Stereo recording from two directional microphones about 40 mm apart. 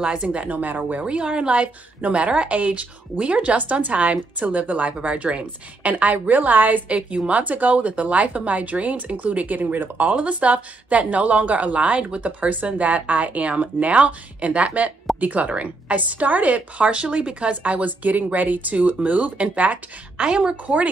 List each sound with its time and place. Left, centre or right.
0.0 s speech: right
1.0 s speech: right
9.6 s speech: right
20.2 s a woman's voice: right
20.6 s speech: right